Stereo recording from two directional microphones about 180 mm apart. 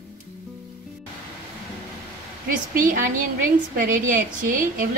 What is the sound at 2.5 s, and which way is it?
Speech, 50° right (ahead or behind).